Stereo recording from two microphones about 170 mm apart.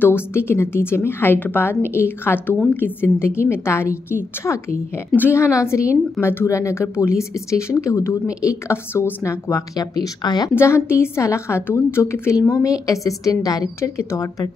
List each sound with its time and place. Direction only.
0.0 s a woman's voice: 15° left (ahead or behind)